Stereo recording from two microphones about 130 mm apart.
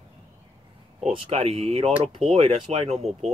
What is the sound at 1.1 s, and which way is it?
Speech, 45° right (ahead or behind).